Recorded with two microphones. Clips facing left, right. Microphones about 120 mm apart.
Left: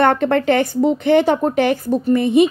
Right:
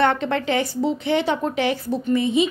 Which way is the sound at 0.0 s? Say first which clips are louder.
Left 5 dB; 50° left (ahead or behind).